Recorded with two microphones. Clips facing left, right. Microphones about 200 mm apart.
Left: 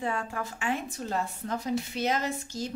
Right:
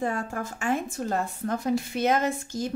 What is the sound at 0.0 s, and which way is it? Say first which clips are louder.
A woman's voice: right 3 dB; 45° right (ahead or behind).